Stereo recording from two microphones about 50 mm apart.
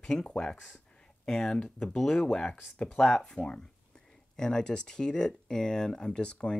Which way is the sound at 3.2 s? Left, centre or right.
Centre.